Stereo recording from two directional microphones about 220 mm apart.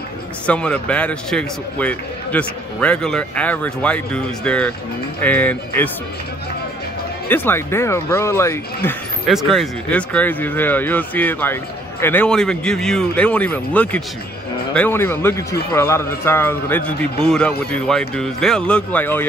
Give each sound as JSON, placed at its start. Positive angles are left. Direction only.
{"t": 0.5, "sound": "a man's voice", "side_deg": 5}
{"t": 7.2, "sound": "a man's voice", "side_deg": 10}
{"t": 9.3, "sound": "a man's voice", "side_deg": 0}